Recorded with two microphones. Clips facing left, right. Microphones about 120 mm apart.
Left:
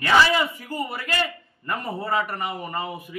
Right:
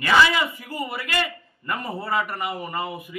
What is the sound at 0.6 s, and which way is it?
A man's voice, centre (ahead or behind).